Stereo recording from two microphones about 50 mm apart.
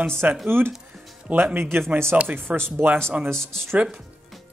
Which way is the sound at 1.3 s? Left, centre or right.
Right.